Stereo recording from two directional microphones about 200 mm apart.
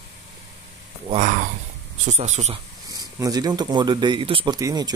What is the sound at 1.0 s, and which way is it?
Speech, 35° right (ahead or behind).